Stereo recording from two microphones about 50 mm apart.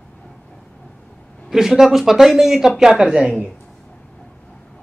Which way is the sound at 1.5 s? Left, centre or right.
Centre.